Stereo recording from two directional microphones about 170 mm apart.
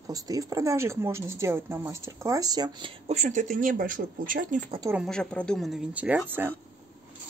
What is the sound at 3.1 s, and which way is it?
Speech, 45° right (ahead or behind).